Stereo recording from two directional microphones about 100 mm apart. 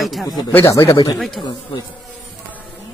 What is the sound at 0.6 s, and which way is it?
Speech, 30° left (ahead or behind).